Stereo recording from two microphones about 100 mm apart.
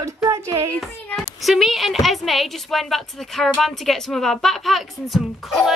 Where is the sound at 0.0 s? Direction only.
30° right (ahead or behind).